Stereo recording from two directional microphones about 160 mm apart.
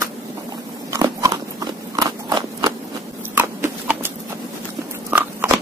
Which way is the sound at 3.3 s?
15° right (ahead or behind).